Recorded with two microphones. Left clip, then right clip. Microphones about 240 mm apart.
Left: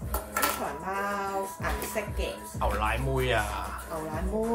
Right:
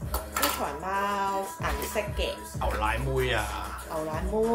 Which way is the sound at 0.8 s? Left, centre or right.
Centre.